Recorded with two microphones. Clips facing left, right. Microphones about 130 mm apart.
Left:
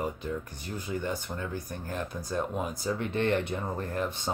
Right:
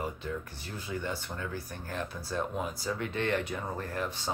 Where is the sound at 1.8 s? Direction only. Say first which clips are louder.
Left 2 dB; 20° left (ahead or behind).